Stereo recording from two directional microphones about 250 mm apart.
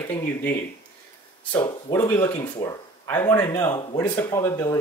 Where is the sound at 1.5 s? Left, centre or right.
Centre.